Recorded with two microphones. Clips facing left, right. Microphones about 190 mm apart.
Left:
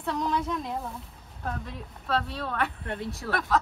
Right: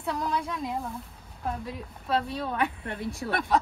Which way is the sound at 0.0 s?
5° right (ahead or behind).